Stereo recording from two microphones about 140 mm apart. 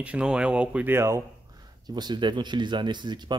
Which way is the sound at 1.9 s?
30° right (ahead or behind).